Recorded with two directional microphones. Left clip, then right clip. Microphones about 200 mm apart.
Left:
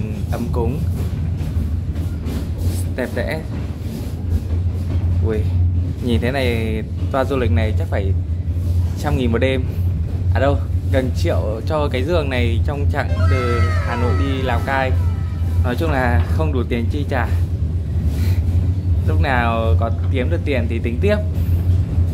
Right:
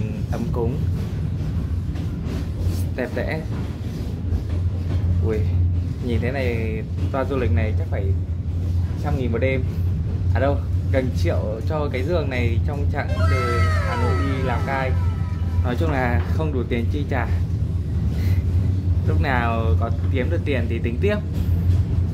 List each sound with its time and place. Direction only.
3.0 s speech: 5° left (ahead or behind)
6.0 s speech: 15° left (ahead or behind)
9.0 s speech: 20° left (ahead or behind)
10.3 s speech: 5° left (ahead or behind)
13.2 s speech: centre (ahead or behind)
14.5 s speech: 15° left (ahead or behind)
19.0 s speech: 5° left (ahead or behind)